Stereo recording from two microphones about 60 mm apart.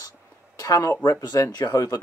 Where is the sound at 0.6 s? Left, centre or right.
Left.